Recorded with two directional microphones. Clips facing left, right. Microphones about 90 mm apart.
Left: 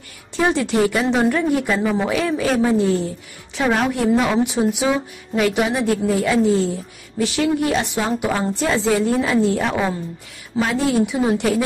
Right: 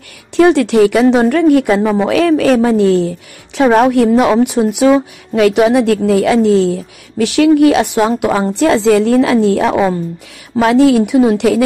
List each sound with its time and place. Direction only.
0.4 s speech: 70° right (ahead or behind)
3.6 s a woman's voice: 50° right (ahead or behind)
3.9 s a woman's voice: 65° right (ahead or behind); by 11.6 s 80° right